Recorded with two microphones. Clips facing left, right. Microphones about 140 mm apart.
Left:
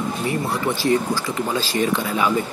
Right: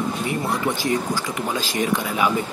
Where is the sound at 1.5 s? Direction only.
15° right (ahead or behind).